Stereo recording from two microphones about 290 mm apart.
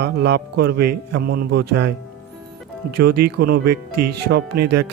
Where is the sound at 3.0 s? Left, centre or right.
Right.